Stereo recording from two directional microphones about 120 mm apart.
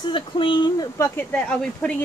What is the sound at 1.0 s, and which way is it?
Speech, 20° left (ahead or behind).